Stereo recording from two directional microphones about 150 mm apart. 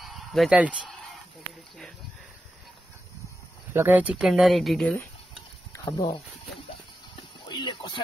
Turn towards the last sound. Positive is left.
turn(degrees=35)  # may be behind; listen again after turning